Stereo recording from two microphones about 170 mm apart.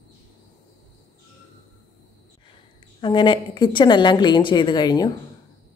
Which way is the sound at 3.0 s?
25° left (ahead or behind).